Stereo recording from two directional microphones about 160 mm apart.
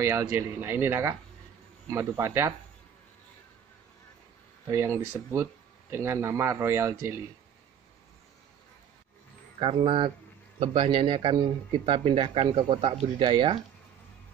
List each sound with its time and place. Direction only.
0.0 s speech: 15° right (ahead or behind)
4.6 s speech: 15° right (ahead or behind)
9.6 s speech: 30° right (ahead or behind)